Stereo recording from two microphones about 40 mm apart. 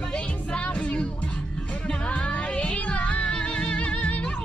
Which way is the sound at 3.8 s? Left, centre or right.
Left.